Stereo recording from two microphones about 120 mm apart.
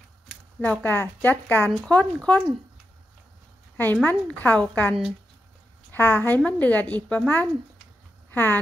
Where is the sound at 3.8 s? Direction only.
15° left (ahead or behind).